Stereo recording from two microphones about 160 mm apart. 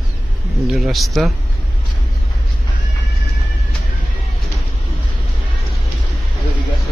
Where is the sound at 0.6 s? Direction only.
Centre (ahead or behind).